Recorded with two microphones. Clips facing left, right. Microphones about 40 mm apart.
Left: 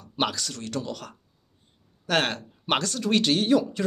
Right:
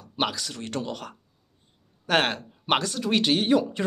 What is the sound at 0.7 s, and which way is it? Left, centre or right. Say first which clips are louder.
Speech: right 2 dB; right.